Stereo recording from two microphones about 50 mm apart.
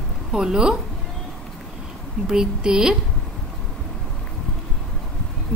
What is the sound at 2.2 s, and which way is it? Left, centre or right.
Speech, centre.